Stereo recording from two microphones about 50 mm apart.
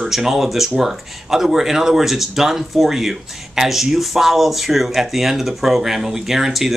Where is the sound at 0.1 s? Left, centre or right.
Centre.